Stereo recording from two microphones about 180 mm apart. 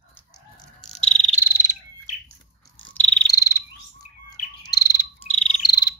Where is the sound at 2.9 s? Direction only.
5° left (ahead or behind).